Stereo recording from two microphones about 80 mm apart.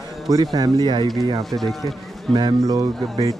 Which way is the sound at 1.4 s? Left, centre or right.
Centre.